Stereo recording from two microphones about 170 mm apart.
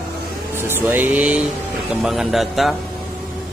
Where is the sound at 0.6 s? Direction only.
15° right (ahead or behind).